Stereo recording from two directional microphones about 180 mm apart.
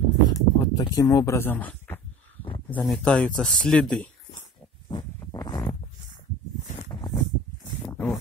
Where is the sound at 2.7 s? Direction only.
5° left (ahead or behind).